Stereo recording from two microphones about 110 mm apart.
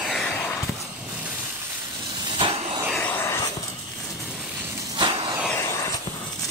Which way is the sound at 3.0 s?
15° left (ahead or behind).